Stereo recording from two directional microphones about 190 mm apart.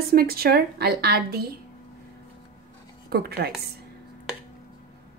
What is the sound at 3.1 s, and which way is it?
Speech, 55° right (ahead or behind).